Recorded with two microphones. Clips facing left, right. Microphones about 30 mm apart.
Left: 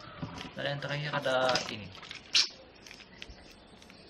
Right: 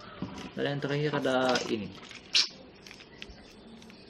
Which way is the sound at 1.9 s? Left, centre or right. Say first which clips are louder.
Even; centre.